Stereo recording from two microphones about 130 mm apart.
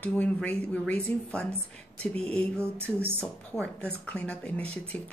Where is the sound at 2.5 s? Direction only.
20° right (ahead or behind).